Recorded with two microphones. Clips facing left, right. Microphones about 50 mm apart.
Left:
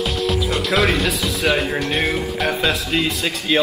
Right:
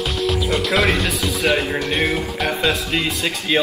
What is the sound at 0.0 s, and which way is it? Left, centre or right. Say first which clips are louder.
Music: even; centre.